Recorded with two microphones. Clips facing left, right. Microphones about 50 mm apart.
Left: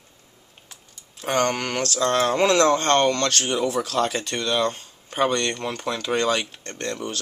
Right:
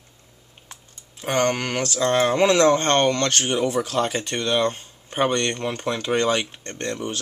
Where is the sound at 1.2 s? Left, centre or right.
Centre.